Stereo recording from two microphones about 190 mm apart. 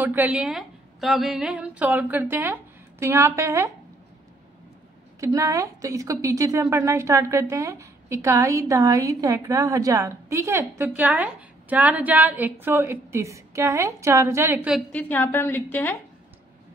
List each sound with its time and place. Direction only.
0.0 s a woman's voice: 10° right (ahead or behind)
5.2 s a woman's voice: 15° right (ahead or behind)
14.9 s a woman's voice: 10° left (ahead or behind)